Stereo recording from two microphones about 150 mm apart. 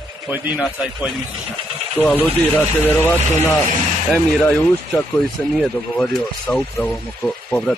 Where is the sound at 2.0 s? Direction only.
10° left (ahead or behind).